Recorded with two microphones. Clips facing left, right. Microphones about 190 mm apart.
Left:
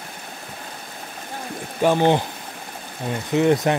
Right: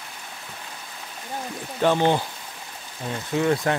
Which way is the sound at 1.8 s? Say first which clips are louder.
Left 3 dB; 15° left (ahead or behind).